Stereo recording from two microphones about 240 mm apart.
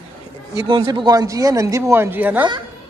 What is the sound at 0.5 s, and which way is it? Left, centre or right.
A man's voice, centre.